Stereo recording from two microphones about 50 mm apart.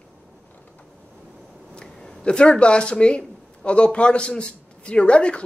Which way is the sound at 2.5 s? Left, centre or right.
Left.